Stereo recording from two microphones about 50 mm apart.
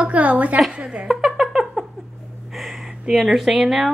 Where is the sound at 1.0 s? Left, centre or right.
Centre.